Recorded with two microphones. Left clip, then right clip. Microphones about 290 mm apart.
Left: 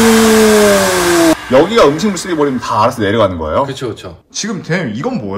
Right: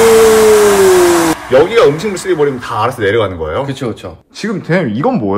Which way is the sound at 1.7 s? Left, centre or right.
Centre.